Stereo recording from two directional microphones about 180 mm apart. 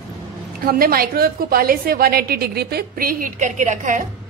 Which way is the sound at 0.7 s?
55° right (ahead or behind).